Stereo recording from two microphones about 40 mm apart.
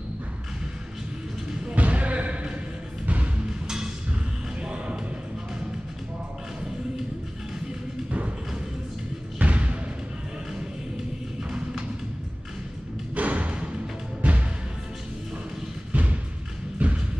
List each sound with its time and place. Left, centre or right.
1.8 s basketball bounce: right
3.6 s a sound: centre
4.6 s music: right
9.4 s basketball bounce: right
13.1 s thump: right
14.2 s music: right
15.9 s music: right
16.7 s thump: right